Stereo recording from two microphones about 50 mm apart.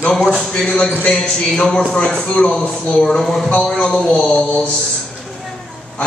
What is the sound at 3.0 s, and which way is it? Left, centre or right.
Speech, centre.